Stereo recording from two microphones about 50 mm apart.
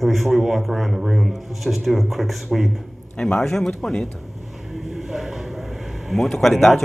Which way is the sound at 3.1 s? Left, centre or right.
Centre.